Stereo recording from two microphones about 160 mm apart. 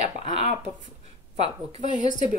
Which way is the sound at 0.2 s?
45° right (ahead or behind).